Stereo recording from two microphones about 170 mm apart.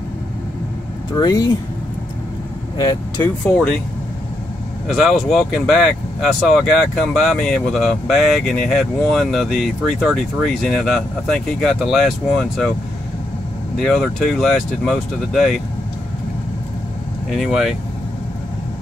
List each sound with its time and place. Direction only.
1.2 s speech: 25° left (ahead or behind)
3.4 s speech: 5° left (ahead or behind)
4.8 s speech: centre (ahead or behind)
13.7 s speech: 5° left (ahead or behind)
17.3 s speech: centre (ahead or behind)